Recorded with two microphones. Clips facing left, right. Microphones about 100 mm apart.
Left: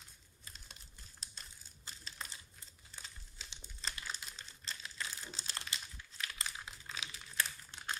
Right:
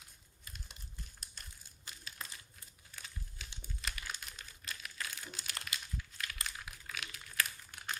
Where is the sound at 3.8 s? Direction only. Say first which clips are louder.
Even; 30° left (ahead or behind).